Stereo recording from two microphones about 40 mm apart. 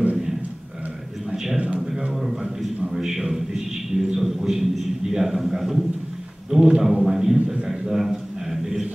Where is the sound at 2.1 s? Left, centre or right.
Centre.